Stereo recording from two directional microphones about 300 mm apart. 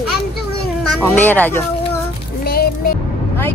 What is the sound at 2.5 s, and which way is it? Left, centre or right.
Music, left.